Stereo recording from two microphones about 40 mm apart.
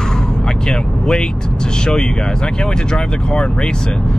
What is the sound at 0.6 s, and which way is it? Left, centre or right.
Vehicle, centre.